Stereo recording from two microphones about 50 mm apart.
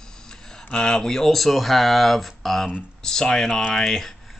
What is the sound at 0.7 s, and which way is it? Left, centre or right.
Speech, centre.